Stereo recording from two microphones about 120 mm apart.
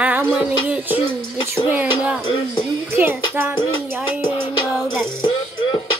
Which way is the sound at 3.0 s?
15° right (ahead or behind).